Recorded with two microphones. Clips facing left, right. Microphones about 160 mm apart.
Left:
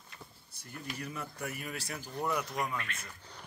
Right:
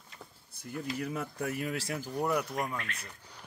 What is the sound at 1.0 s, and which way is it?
Speech, 90° right.